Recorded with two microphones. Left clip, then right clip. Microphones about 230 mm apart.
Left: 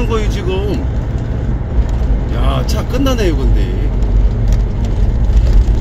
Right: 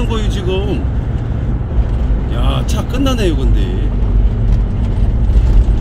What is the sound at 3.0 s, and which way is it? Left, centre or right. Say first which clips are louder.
Speech: even; right.